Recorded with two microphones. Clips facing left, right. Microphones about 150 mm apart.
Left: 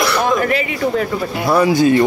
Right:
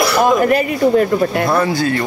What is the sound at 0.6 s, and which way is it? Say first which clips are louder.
Speech: right 5 dB; 55° right (ahead or behind).